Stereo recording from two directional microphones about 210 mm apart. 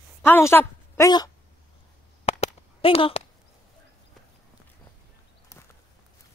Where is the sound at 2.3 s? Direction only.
30° left (ahead or behind).